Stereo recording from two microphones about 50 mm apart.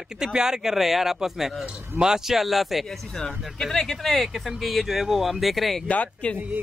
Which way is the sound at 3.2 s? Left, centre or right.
Centre.